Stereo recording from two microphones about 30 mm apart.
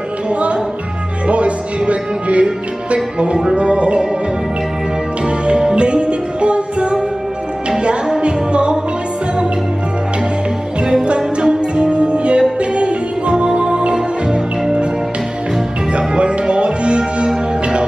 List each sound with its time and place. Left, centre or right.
0.3 s music: right
5.8 s music: right
8.2 s music: right
11.1 s music: right
16.1 s music: right